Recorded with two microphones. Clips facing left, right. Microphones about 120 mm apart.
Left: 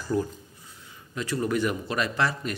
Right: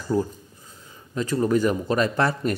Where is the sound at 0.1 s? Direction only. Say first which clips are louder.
Right 3 dB; 25° right (ahead or behind).